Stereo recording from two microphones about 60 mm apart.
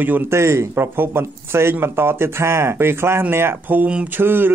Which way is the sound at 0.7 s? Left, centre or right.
Right.